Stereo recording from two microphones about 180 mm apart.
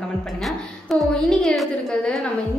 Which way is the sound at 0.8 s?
Centre (ahead or behind).